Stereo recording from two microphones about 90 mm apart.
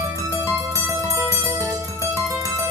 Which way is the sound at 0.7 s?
35° right (ahead or behind).